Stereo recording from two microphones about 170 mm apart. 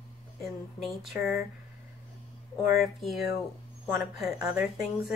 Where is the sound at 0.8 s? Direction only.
5° right (ahead or behind).